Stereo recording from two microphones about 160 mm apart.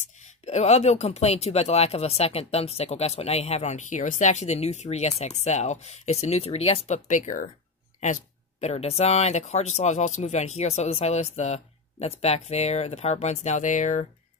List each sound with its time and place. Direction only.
0.0 s speech: 45° left (ahead or behind)